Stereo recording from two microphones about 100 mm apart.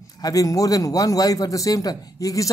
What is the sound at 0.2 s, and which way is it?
A man's voice, 35° left (ahead or behind).